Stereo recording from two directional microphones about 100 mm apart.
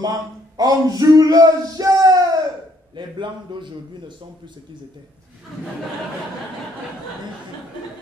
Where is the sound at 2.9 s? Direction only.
50° right (ahead or behind).